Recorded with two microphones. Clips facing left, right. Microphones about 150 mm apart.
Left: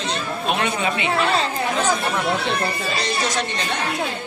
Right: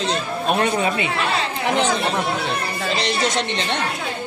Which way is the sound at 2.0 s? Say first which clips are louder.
Even; 25° right (ahead or behind).